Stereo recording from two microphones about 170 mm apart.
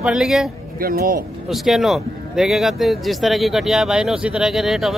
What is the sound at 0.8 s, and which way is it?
Speech, 60° right (ahead or behind).